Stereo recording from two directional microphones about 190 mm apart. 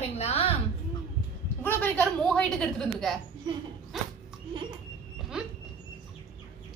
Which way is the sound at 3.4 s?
20° right (ahead or behind).